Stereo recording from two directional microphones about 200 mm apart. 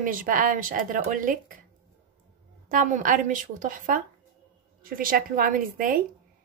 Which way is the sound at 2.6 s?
40° right (ahead or behind).